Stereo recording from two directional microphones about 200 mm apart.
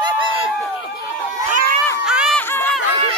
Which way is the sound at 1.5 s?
45° right (ahead or behind).